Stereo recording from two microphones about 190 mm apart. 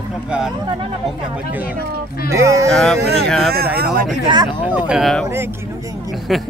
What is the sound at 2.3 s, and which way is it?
Speech, 15° right (ahead or behind).